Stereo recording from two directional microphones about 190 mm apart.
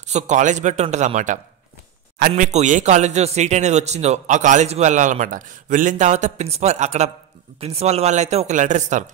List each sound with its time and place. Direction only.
0.0 s speech: 40° right (ahead or behind)